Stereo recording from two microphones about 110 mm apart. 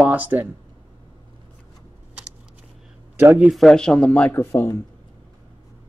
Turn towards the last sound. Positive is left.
turn(degrees=25)  # may be behind; listen again after turning